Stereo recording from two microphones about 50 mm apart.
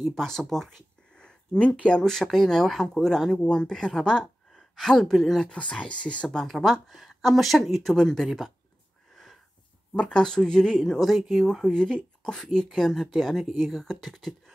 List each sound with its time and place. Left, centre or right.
0.0 s speech: centre
1.1 s a sound: centre
1.7 s speech: left
2.0 s speech: centre
5.5 s speech: centre
6.4 s speech: centre
8.3 s speech: centre
9.1 s wheeze: centre
9.9 s speech: centre